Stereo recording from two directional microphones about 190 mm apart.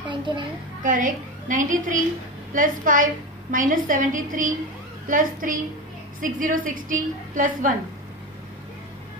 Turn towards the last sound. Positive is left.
turn(degrees=-45)  # may be behind; listen again after turning